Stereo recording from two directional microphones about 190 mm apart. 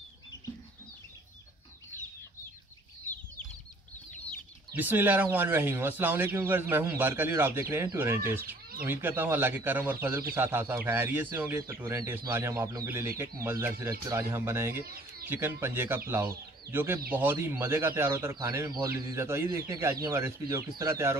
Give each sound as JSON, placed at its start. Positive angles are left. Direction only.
{"t": 4.7, "sound": "speech", "side_deg": -10}